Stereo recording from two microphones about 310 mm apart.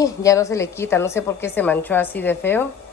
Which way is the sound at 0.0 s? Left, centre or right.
Centre.